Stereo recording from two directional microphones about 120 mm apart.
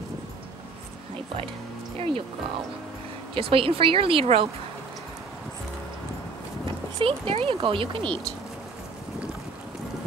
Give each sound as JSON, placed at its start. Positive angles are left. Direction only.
{"t": 2.0, "sound": "speech", "side_deg": -50}
{"t": 3.3, "sound": "speech", "side_deg": -50}
{"t": 7.0, "sound": "speech", "side_deg": -50}